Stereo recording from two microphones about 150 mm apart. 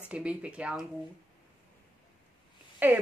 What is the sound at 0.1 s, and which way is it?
Speech, 10° right (ahead or behind).